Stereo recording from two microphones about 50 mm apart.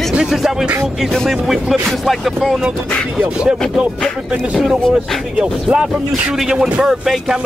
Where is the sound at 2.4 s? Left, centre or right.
Centre.